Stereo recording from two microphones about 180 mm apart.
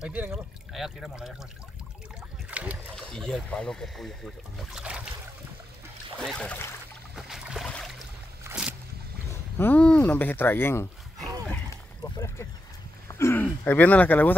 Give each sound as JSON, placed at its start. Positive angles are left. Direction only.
{"t": 0.0, "sound": "speech", "side_deg": -5}
{"t": 2.5, "sound": "speech", "side_deg": -5}
{"t": 6.1, "sound": "speech", "side_deg": 5}
{"t": 7.2, "sound": "boat", "side_deg": -5}
{"t": 8.5, "sound": "a sound", "side_deg": -5}
{"t": 9.6, "sound": "speech", "side_deg": 10}
{"t": 11.7, "sound": "boat", "side_deg": 15}
{"t": 13.1, "sound": "speech", "side_deg": 15}